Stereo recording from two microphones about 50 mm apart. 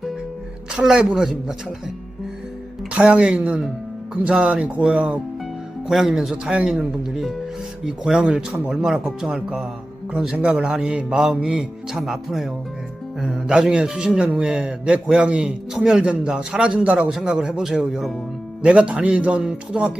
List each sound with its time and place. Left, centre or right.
0.7 s speech: centre
2.9 s a man's voice: right
5.9 s speech: centre
6.3 s a man's voice: centre
15.7 s speech: centre
16.0 s a man's voice: right
18.6 s a man's voice: right